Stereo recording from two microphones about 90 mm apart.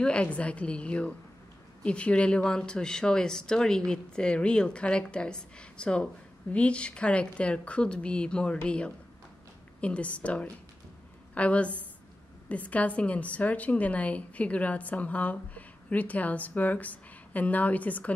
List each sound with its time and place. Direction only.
0.0 s a woman's voice: 15° left (ahead or behind)